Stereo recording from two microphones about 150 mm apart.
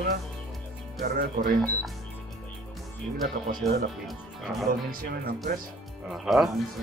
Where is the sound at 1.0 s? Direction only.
80° right.